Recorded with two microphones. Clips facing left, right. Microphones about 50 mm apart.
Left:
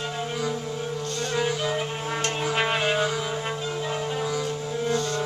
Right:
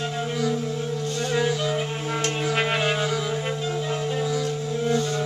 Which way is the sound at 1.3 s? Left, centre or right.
Centre.